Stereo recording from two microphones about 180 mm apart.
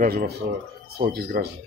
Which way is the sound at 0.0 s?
60° right (ahead or behind).